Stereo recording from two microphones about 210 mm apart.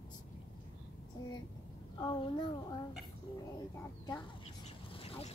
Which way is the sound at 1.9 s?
20° left (ahead or behind).